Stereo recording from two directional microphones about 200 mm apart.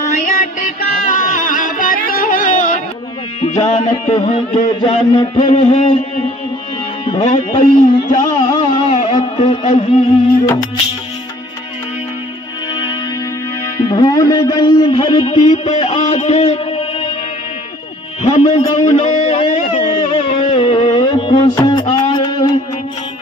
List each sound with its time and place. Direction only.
0.1 s music: 40° left (ahead or behind)
7.1 s speech: 30° left (ahead or behind)
7.7 s music: 40° left (ahead or behind)
8.2 s a sound: 20° left (ahead or behind)
9.7 s music: 35° left (ahead or behind)
13.7 s a man's voice: 20° left (ahead or behind)
15.5 s music: 35° left (ahead or behind)
18.2 s music: 30° left (ahead or behind)
19.9 s music: 25° left (ahead or behind)